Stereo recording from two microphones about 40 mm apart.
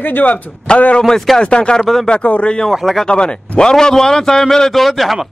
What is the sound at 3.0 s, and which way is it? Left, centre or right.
Speech, left.